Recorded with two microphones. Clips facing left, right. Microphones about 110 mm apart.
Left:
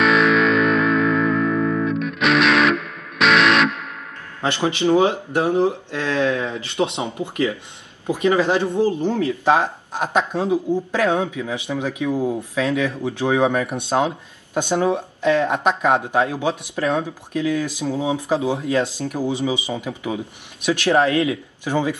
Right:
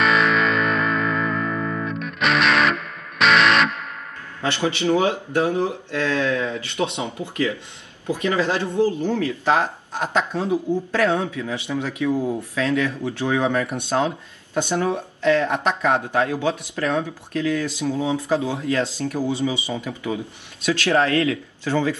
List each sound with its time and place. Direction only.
0.0 s music: centre (ahead or behind)
4.4 s speech: 20° left (ahead or behind)